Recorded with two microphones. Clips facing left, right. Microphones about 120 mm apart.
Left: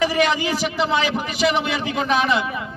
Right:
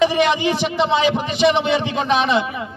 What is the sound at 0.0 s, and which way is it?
A man's voice, 20° right (ahead or behind).